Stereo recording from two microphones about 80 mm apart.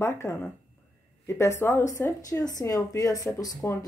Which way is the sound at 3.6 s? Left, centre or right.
Left.